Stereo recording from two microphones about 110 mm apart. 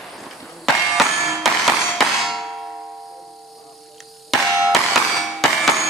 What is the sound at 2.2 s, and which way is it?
Clang, centre (ahead or behind).